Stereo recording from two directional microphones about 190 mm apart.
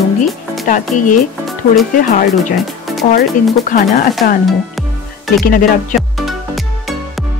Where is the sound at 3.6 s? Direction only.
40° left (ahead or behind).